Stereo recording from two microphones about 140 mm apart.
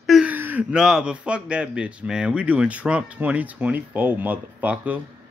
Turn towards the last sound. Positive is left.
turn(degrees=-10)  # may be behind; listen again after turning